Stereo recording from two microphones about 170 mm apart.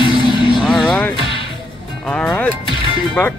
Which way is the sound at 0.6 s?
5° left (ahead or behind).